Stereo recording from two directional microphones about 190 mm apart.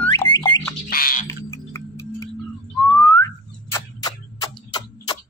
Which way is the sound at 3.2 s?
15° left (ahead or behind).